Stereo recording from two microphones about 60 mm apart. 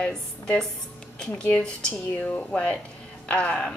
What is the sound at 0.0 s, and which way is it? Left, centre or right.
A woman's voice, centre.